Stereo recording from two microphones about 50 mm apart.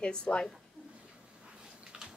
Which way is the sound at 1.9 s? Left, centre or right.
Centre.